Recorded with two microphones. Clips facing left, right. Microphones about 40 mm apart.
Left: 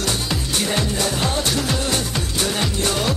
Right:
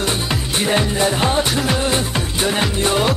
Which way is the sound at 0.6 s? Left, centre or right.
Right.